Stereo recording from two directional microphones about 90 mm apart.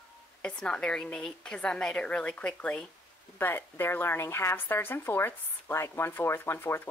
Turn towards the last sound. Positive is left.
turn(degrees=25)  # may be behind; listen again after turning